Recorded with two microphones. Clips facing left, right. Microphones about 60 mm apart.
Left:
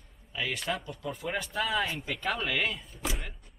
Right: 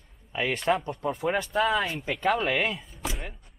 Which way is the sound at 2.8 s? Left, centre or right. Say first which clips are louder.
Right 1 dB; centre.